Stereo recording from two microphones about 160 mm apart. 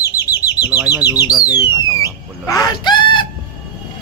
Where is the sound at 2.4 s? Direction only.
25° left (ahead or behind).